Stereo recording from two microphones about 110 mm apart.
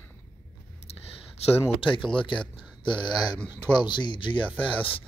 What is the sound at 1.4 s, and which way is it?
Speech, 70° left (ahead or behind).